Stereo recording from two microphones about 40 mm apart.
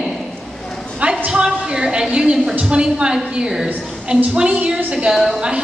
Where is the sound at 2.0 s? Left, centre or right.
Right.